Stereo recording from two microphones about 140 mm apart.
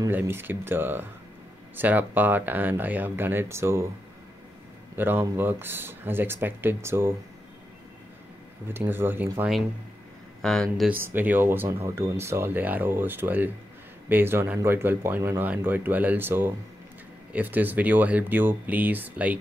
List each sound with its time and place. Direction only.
0.1 s speech: 15° right (ahead or behind)
4.9 s speech: 15° right (ahead or behind)
8.6 s speech: 15° right (ahead or behind)
10.4 s speech: 5° left (ahead or behind)
10.9 s speech: 15° right (ahead or behind)